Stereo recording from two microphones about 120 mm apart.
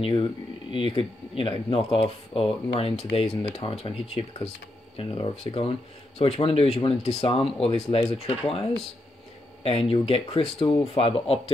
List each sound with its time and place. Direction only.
0.0 s speech: 45° left (ahead or behind)